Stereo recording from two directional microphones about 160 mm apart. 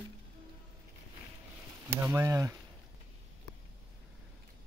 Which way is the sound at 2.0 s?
15° right (ahead or behind).